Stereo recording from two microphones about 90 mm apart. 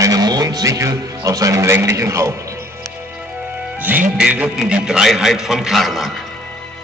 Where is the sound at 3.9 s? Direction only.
20° right (ahead or behind).